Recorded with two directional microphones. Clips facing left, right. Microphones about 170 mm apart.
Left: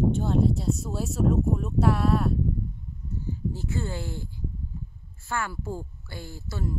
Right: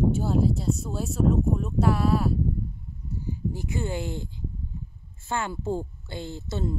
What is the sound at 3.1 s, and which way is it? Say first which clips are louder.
A woman's voice: right 1 dB; 15° right (ahead or behind).